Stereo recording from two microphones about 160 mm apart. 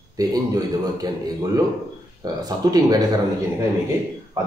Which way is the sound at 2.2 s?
25° right (ahead or behind).